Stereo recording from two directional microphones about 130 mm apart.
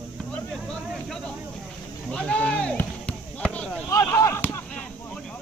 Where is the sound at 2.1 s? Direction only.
5° left (ahead or behind).